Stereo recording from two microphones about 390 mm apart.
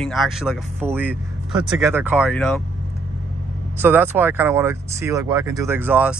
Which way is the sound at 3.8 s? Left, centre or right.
Centre.